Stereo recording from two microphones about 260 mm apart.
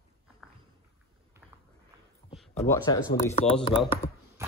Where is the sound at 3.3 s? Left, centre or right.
Left.